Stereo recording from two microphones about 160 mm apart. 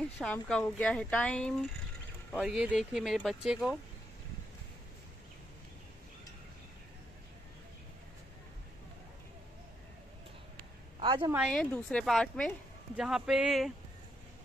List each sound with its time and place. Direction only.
0.2 s speech: 5° left (ahead or behind)
2.3 s speech: 5° right (ahead or behind)
11.0 s speech: 30° right (ahead or behind)
11.7 s speech: 5° left (ahead or behind)